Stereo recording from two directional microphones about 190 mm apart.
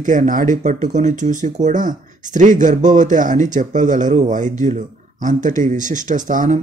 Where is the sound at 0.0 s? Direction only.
45° right (ahead or behind).